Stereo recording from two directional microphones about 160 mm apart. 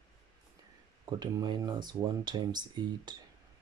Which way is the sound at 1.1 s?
25° right (ahead or behind).